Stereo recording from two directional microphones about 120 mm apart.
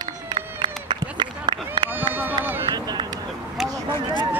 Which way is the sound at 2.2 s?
15° right (ahead or behind).